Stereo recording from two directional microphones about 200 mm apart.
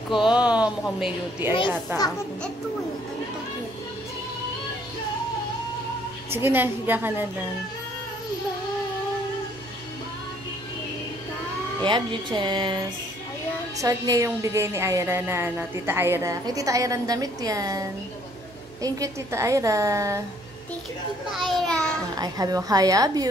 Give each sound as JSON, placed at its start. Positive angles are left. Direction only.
{"t": 0.1, "sound": "speech", "side_deg": -5}
{"t": 6.3, "sound": "a woman's voice", "side_deg": -10}
{"t": 11.8, "sound": "a woman's voice", "side_deg": -25}
{"t": 13.7, "sound": "a woman's voice", "side_deg": -15}
{"t": 21.3, "sound": "speech", "side_deg": 0}
{"t": 22.1, "sound": "a woman's voice", "side_deg": -20}